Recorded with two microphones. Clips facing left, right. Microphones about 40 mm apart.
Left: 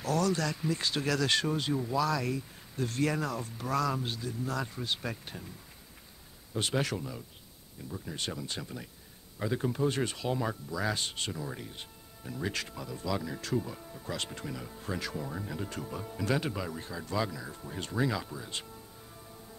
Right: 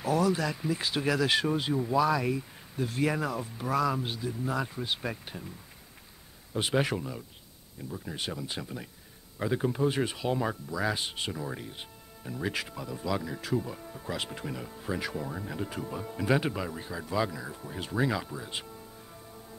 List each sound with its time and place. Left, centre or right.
0.0 s speech: centre
6.5 s speech: centre